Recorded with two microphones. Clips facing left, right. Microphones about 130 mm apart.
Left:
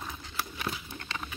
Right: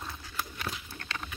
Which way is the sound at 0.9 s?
15° left (ahead or behind).